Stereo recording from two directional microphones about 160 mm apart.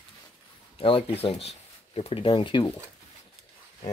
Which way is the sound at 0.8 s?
35° left (ahead or behind).